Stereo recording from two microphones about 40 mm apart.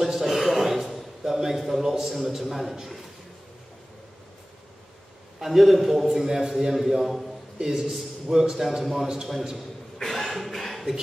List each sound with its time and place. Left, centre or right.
0.0 s a sound: centre
1.8 s a man's voice: centre
5.4 s a man's voice: centre
7.5 s a man's voice: centre
9.0 s a man's voice: centre
9.9 s a sound: centre